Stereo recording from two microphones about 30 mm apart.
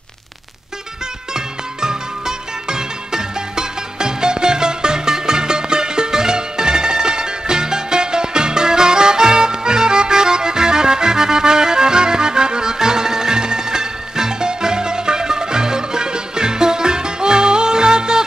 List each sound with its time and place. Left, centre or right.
1.3 s music: right